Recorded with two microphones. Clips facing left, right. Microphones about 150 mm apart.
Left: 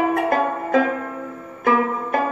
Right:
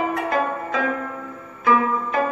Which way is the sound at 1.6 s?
50° left (ahead or behind).